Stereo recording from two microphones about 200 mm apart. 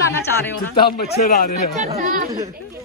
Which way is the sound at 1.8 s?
35° right (ahead or behind).